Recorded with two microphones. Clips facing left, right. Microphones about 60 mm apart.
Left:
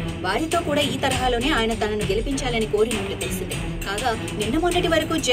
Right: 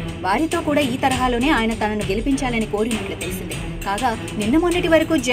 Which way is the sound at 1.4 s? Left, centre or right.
Right.